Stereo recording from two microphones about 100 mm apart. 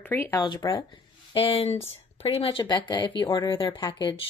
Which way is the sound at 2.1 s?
70° left (ahead or behind).